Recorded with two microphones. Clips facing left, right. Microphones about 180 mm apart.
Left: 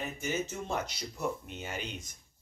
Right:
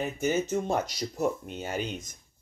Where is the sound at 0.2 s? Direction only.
40° right (ahead or behind).